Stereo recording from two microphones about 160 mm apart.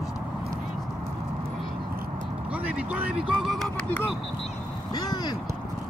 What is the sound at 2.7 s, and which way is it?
Vehicle, 10° right (ahead or behind).